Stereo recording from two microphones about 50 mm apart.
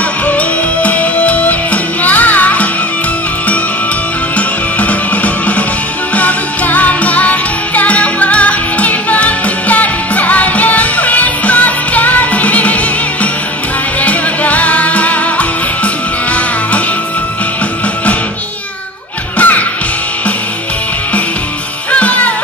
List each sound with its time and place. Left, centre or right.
0.3 s music: left
4.4 s music: left
14.0 s music: left
19.3 s music: left
21.9 s music: left